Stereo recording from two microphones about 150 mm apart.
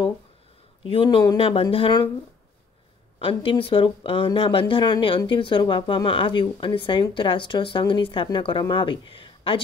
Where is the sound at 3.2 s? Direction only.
35° left (ahead or behind).